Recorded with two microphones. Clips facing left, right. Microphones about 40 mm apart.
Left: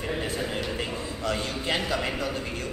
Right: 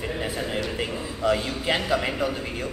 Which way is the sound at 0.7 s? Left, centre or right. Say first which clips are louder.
Right 2 dB; centre.